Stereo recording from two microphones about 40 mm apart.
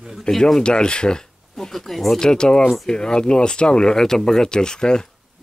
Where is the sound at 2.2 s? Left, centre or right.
Centre.